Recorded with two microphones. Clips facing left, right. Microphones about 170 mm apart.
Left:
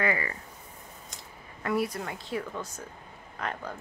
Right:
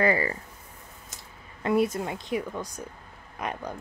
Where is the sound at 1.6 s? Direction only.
20° right (ahead or behind).